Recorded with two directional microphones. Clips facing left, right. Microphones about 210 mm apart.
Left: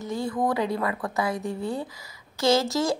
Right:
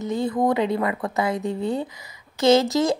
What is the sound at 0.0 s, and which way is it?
A woman's voice, 20° right (ahead or behind).